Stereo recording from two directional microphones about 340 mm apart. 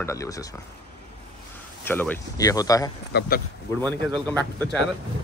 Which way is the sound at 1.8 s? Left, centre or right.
Centre.